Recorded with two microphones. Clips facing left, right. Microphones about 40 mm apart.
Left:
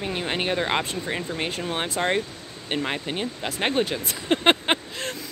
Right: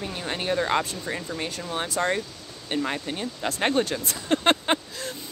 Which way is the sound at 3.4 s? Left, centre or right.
Centre.